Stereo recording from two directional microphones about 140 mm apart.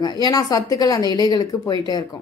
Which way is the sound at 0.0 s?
30° left (ahead or behind).